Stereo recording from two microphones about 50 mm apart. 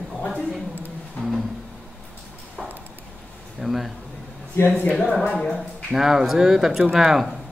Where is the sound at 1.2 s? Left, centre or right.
Left.